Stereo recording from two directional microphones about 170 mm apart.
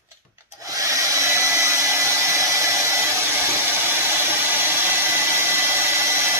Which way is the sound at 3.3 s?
15° right (ahead or behind).